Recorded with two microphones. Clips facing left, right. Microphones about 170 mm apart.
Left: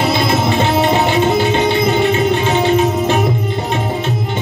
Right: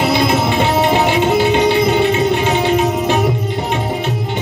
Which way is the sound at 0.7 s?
15° right (ahead or behind).